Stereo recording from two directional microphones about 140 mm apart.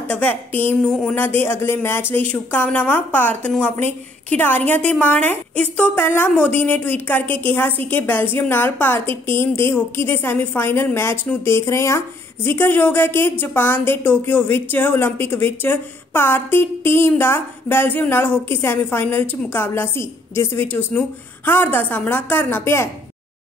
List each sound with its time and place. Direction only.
0.1 s speech: 15° left (ahead or behind)